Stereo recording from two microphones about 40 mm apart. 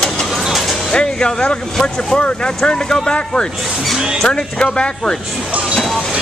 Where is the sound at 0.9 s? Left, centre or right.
Left.